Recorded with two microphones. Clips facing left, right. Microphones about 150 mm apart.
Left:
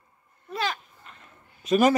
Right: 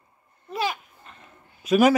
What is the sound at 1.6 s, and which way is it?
Speech, 5° right (ahead or behind).